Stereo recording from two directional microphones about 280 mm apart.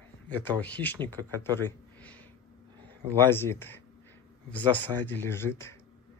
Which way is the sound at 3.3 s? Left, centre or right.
Centre.